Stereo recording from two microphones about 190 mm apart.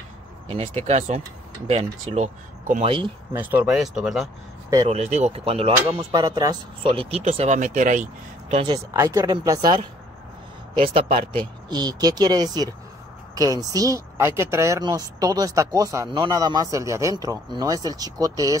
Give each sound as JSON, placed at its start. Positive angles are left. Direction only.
{"t": 0.5, "sound": "speech", "side_deg": -35}
{"t": 3.3, "sound": "speech", "side_deg": -10}
{"t": 4.8, "sound": "speech", "side_deg": -35}
{"t": 5.9, "sound": "speech", "side_deg": -20}
{"t": 8.7, "sound": "speech", "side_deg": -15}
{"t": 10.8, "sound": "speech", "side_deg": -30}